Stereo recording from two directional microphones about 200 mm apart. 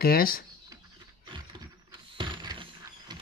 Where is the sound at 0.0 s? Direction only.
50° left (ahead or behind).